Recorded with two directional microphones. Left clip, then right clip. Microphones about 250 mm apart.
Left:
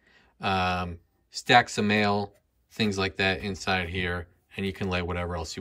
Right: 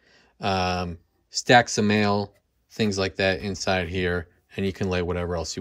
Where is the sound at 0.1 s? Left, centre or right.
Centre.